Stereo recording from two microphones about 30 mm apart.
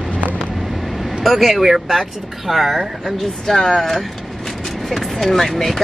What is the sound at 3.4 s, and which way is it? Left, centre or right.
Speech, centre.